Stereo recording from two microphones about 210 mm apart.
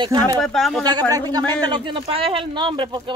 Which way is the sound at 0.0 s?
20° right (ahead or behind).